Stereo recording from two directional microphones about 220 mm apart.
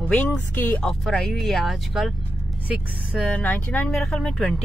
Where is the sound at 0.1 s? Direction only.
5° left (ahead or behind).